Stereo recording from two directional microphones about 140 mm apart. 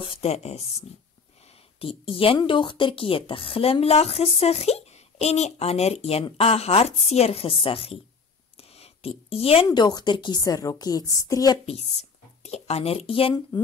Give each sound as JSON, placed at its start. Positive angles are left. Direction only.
{"t": 0.0, "sound": "speech", "side_deg": 45}
{"t": 8.5, "sound": "a sound", "side_deg": 45}
{"t": 9.7, "sound": "a woman's voice", "side_deg": 30}
{"t": 11.6, "sound": "speech", "side_deg": 50}